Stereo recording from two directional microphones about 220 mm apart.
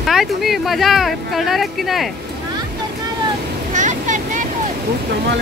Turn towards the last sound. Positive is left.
turn(degrees=-35)  # may be behind; listen again after turning